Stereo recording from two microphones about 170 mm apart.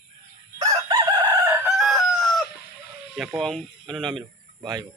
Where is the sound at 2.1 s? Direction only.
Centre (ahead or behind).